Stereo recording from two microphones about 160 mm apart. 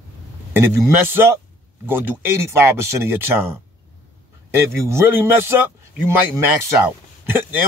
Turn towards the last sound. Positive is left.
turn(degrees=-15)  # may be behind; listen again after turning